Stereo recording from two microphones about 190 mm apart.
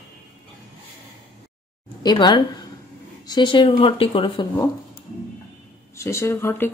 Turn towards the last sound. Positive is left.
turn(degrees=10)  # may be behind; listen again after turning